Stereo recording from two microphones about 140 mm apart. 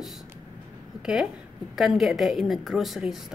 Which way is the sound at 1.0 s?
5° right (ahead or behind).